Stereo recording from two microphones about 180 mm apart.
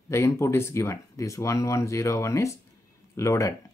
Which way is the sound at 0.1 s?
15° left (ahead or behind).